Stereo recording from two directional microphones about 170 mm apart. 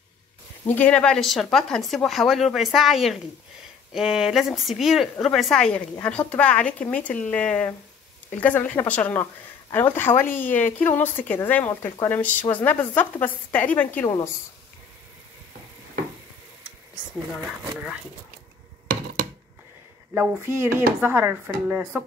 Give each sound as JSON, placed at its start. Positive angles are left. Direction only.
{"t": 0.7, "sound": "a woman's voice", "side_deg": 10}
{"t": 20.2, "sound": "speech", "side_deg": -15}